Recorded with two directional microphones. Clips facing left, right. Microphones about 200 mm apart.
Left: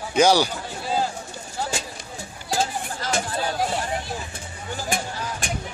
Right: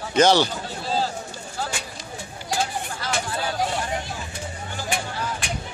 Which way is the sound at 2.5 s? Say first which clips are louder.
Left 1 dB; 40° left (ahead or behind).